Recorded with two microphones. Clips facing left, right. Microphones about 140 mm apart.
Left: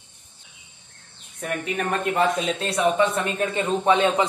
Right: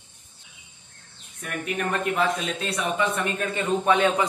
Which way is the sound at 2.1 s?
35° left (ahead or behind).